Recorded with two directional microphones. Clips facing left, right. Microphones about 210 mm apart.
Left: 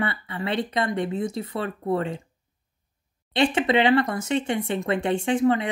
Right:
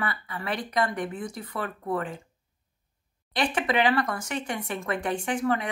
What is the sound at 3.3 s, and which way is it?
Speech, 25° left (ahead or behind).